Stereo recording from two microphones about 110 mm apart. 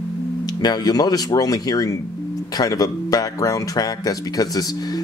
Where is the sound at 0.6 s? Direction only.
35° left (ahead or behind).